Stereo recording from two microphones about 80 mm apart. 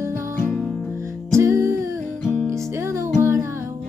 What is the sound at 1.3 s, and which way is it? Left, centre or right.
Music, right.